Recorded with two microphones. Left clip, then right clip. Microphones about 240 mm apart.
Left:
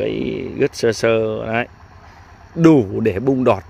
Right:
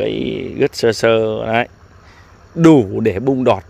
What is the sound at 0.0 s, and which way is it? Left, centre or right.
Speech, centre.